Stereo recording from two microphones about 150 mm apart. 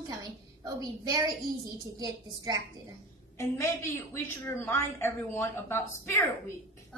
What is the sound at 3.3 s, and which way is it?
A woman's voice, 20° left (ahead or behind).